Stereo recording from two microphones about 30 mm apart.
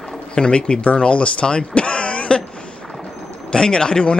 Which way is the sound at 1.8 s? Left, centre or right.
Left.